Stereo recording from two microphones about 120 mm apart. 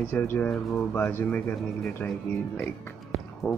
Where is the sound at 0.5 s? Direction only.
Centre (ahead or behind).